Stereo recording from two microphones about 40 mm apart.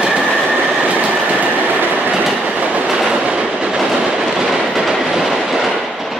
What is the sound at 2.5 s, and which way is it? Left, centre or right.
Train, right.